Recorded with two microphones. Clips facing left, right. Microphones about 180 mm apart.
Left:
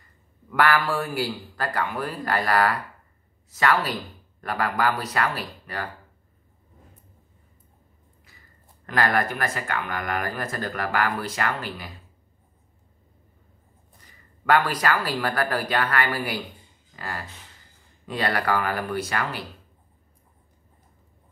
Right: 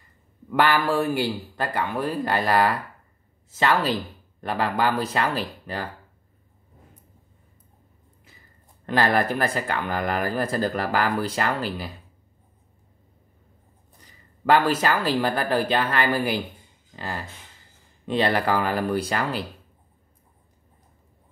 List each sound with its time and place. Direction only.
0.5 s a man's voice: 25° right (ahead or behind)
8.8 s speech: 30° right (ahead or behind)
14.4 s a man's voice: 25° right (ahead or behind)